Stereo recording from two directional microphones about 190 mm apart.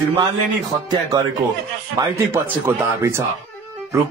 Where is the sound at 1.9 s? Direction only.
15° right (ahead or behind).